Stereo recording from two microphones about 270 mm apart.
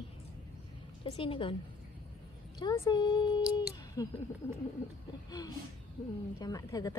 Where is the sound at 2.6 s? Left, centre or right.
Centre.